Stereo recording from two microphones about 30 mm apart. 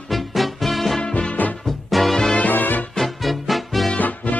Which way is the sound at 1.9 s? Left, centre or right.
Centre.